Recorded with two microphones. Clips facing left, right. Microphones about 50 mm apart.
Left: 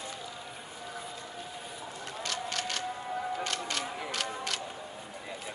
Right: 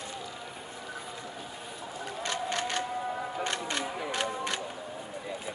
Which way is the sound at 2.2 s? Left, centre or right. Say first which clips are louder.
Right 3 dB; right.